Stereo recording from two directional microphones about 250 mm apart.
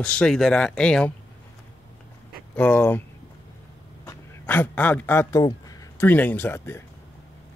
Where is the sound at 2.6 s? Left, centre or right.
Centre.